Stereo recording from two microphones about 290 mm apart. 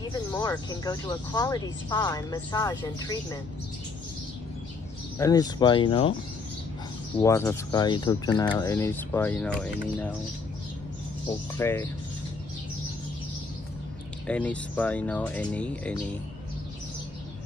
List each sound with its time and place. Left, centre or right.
0.1 s speech: centre
5.2 s speech: centre
7.2 s speech: centre
11.2 s speech: centre
14.2 s speech: centre